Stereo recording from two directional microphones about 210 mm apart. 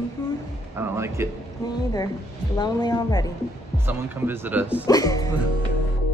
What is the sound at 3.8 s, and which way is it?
Speech, 10° right (ahead or behind).